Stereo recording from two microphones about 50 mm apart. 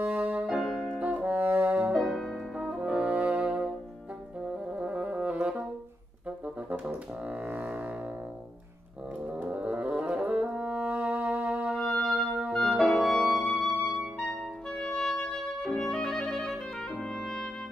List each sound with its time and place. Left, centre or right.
0.0 s music: right
0.5 s music: centre
0.7 s brass instrument: right
2.0 s music: centre
2.5 s french horn: right
3.3 s brass instrument: right
4.5 s music: right
9.5 s music: right
12.5 s clarinet: centre
12.9 s music: centre
14.2 s clarinet: centre
15.6 s music: centre
16.1 s clarinet: centre